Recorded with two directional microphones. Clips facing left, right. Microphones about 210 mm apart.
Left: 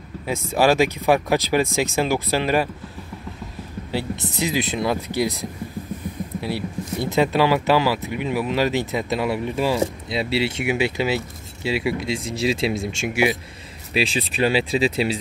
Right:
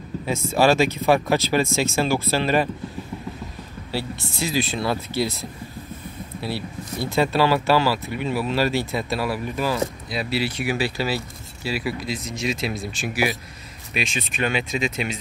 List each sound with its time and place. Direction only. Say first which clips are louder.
0.3 s speech: even; 15° left (ahead or behind)
3.9 s speech: left 3 dB; 20° left (ahead or behind)
13.9 s speech: left 5 dB; 35° left (ahead or behind)